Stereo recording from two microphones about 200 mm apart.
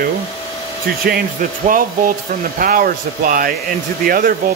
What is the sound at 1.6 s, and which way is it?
Speech, 45° right (ahead or behind).